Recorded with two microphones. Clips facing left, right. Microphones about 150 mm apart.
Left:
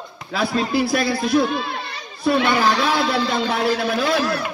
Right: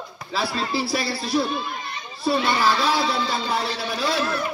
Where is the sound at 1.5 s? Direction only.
80° left.